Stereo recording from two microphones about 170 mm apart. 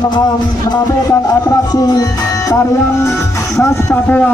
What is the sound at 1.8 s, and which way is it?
Music, 20° left (ahead or behind).